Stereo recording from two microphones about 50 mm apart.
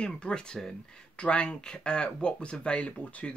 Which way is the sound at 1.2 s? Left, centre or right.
Left.